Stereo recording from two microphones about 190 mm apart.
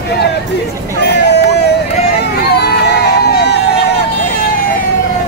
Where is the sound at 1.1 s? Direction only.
60° left (ahead or behind).